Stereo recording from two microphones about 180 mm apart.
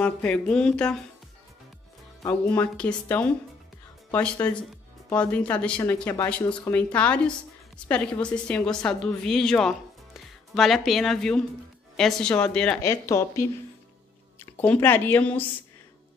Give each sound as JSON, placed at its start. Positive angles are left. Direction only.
{"t": 0.0, "sound": "a woman's voice", "side_deg": 10}
{"t": 2.2, "sound": "a woman's voice", "side_deg": 10}